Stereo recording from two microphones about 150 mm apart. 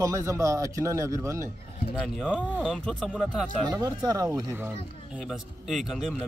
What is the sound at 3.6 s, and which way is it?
Speech, 25° right (ahead or behind).